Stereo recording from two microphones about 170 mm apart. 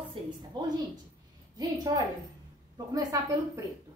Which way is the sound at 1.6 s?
20° right (ahead or behind).